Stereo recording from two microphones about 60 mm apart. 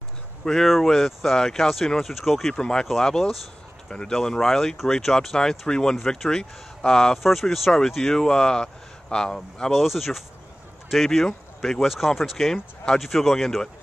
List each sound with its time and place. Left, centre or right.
0.5 s speech: centre
7.2 s speech: centre
9.8 s speech: centre
12.5 s speech: centre
13.0 s speech: centre